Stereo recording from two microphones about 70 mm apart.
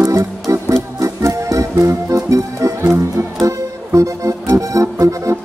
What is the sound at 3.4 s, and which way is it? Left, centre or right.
Music, right.